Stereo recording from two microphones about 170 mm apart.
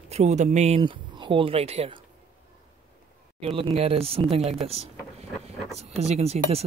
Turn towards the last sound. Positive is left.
turn(degrees=-40)  # may be behind; listen again after turning